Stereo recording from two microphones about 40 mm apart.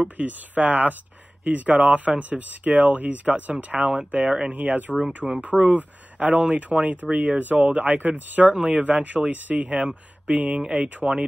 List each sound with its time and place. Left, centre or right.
0.2 s speech: right
4.5 s speech: right
9.8 s speech: right